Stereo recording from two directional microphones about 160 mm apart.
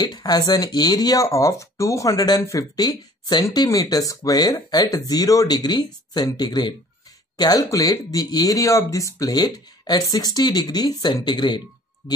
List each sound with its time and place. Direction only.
0.0 s speech: 25° left (ahead or behind)